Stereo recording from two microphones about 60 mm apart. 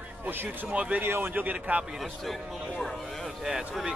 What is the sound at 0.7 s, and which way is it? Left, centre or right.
Speech, right.